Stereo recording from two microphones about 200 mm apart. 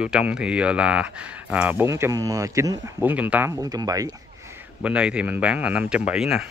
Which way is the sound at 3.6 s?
20° right (ahead or behind).